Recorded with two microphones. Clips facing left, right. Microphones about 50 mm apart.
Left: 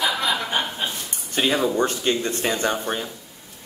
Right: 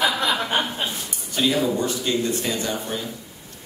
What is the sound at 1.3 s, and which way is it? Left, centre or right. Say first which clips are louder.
Speech: left 1 dB; left.